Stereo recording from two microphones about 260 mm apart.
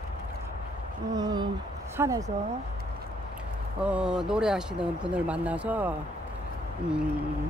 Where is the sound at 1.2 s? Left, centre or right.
Centre.